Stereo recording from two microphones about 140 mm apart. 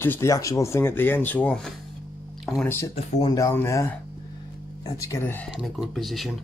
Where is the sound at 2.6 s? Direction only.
20° left (ahead or behind).